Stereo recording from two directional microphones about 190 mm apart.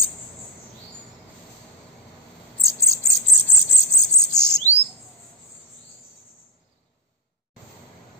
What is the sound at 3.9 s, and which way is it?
Bird, 40° left (ahead or behind).